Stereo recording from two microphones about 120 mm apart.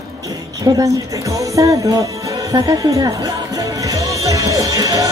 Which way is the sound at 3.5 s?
30° right (ahead or behind).